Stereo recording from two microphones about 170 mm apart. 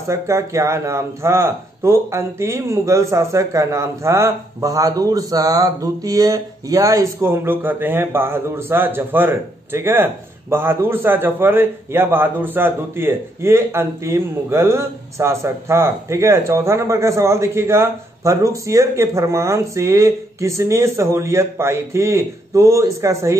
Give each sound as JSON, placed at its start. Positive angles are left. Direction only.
{"t": 0.1, "sound": "a man's voice", "side_deg": -15}